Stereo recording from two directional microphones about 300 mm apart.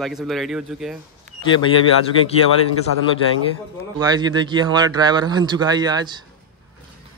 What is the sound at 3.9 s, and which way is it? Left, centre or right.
A man's voice, centre.